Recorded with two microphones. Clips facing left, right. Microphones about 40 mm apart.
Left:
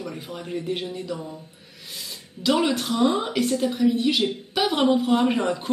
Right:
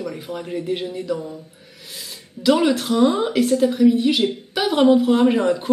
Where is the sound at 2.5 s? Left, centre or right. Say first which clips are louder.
Right 5 dB; centre.